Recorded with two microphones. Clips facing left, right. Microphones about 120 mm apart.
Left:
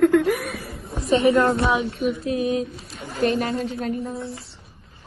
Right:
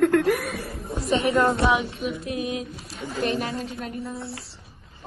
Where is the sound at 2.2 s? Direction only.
35° left (ahead or behind).